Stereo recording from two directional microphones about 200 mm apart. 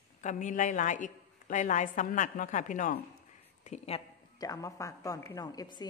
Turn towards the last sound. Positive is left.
turn(degrees=20)  # may be behind; listen again after turning